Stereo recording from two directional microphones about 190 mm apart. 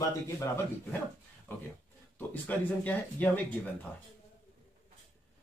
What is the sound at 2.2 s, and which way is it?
Speech, 10° left (ahead or behind).